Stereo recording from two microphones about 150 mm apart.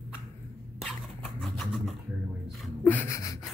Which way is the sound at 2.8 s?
15° left (ahead or behind).